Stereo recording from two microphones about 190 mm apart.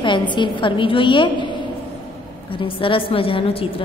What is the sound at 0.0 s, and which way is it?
A woman's voice, 25° left (ahead or behind).